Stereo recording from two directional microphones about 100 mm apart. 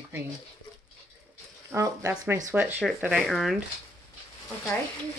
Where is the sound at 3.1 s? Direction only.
Centre (ahead or behind).